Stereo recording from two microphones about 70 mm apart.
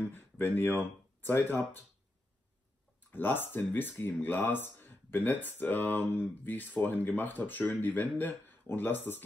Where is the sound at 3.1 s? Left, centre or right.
Left.